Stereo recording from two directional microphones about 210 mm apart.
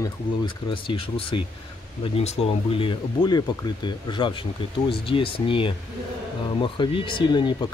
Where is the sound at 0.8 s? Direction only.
25° left (ahead or behind).